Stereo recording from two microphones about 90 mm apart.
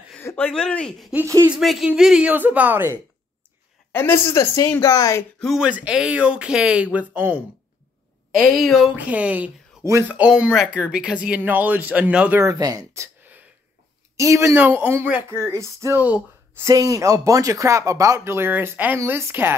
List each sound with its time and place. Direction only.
0.4 s speech: 10° left (ahead or behind)
1.2 s speech: 30° right (ahead or behind)
1.6 s speech: centre (ahead or behind)
2.3 s speech: 20° right (ahead or behind)
3.9 s speech: 25° left (ahead or behind)
5.6 s speech: 15° right (ahead or behind)
8.4 s speech: centre (ahead or behind)
8.9 s speech: 15° right (ahead or behind)
12.4 s speech: 40° right (ahead or behind)
14.5 s speech: 20° right (ahead or behind)